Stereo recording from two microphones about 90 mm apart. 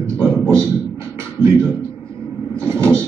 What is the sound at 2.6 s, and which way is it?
Vehicle, 30° right (ahead or behind).